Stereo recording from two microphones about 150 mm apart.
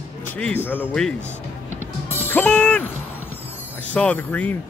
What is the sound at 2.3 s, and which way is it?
Music, 10° left (ahead or behind).